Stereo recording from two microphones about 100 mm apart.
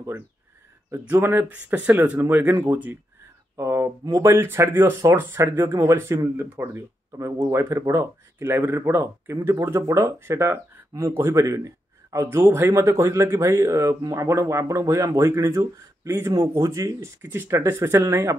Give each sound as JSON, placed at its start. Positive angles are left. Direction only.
{"t": 0.9, "sound": "speech", "side_deg": -20}
{"t": 1.5, "sound": "speech", "side_deg": -15}
{"t": 3.5, "sound": "a sound", "side_deg": -25}
{"t": 4.0, "sound": "speech", "side_deg": -35}
{"t": 12.4, "sound": "speech", "side_deg": -20}
{"t": 12.6, "sound": "speech", "side_deg": -30}